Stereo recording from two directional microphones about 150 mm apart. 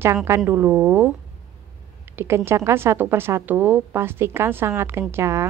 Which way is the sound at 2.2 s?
15° right (ahead or behind).